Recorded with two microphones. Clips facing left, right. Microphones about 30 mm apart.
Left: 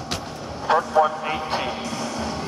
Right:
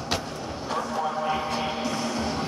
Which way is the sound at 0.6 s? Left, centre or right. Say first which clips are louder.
Left 10 dB; left.